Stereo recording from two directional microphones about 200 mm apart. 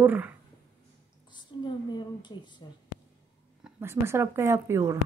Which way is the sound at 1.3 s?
20° left (ahead or behind).